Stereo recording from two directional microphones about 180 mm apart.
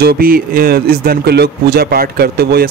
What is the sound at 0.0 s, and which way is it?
A man's voice, 55° right (ahead or behind).